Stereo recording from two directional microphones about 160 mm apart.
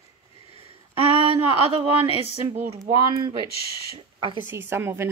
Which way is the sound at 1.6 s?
35° right (ahead or behind).